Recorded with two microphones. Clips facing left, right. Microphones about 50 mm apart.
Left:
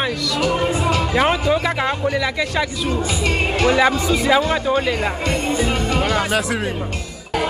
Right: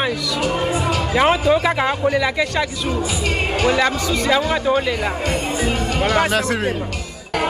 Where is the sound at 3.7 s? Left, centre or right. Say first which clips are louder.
Left 3 dB; centre.